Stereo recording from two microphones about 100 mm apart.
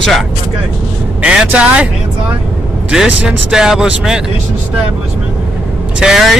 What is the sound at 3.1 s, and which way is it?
Speech, 5° right (ahead or behind).